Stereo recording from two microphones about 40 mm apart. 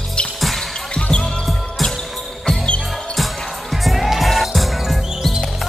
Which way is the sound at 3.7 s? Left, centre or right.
Centre.